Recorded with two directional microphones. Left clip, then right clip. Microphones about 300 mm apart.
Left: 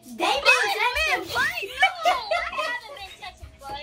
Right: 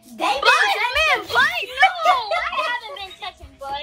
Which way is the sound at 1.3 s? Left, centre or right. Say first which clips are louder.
Right 7 dB; right.